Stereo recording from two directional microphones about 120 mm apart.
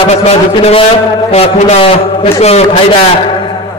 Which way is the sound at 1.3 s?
60° left (ahead or behind).